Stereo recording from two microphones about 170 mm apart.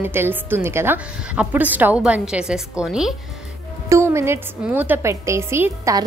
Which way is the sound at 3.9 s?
15° right (ahead or behind).